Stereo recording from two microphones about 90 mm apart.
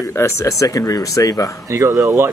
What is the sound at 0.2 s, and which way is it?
Speech, 40° left (ahead or behind).